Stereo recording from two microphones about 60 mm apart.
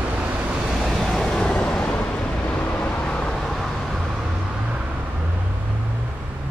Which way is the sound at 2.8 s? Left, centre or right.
Centre.